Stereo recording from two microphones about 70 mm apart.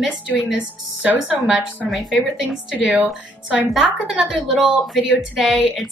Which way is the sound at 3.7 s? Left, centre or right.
Centre.